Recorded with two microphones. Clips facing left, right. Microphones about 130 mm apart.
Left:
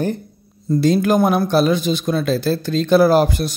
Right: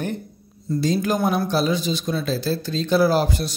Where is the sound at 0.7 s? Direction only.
65° left (ahead or behind).